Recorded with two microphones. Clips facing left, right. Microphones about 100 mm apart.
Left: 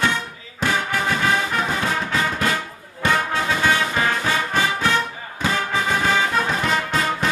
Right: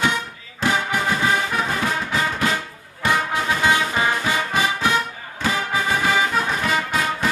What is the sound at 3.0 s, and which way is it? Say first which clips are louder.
Music: even; 15° right (ahead or behind).